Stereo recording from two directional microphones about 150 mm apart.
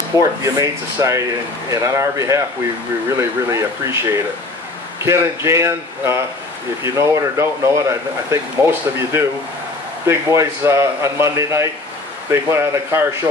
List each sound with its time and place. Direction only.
0.6 s speech: 20° right (ahead or behind)